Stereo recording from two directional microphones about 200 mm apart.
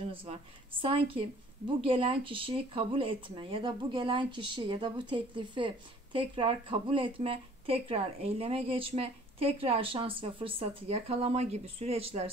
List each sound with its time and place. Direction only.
0.0 s speech: 30° right (ahead or behind)